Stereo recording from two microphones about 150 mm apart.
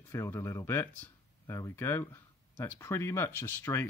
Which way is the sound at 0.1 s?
15° left (ahead or behind).